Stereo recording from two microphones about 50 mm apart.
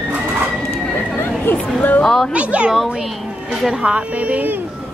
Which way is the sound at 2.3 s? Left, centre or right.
Right.